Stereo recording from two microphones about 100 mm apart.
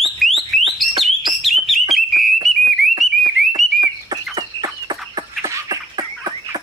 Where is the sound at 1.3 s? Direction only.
Centre (ahead or behind).